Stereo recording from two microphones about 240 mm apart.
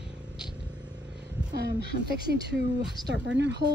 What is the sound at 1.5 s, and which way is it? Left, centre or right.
A woman's voice, right.